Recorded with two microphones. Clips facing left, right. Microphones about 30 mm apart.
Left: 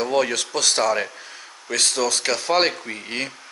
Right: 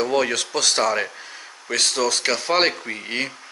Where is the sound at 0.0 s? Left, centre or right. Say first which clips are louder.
Even; centre.